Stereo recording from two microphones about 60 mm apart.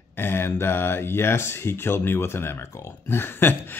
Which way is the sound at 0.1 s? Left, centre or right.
Left.